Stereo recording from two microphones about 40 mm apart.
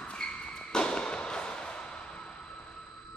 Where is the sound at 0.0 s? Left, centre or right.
Left.